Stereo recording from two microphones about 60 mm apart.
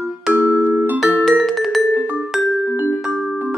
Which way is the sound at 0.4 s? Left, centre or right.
Right.